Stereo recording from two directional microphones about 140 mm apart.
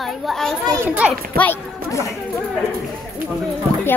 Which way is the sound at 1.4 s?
20° left (ahead or behind).